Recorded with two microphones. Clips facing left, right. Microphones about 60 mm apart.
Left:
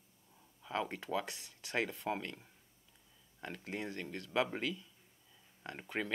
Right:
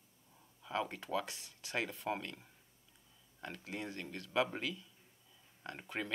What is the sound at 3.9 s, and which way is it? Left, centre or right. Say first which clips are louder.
Speech: even; centre.